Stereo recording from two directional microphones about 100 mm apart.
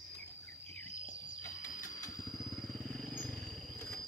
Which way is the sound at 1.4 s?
30° left (ahead or behind).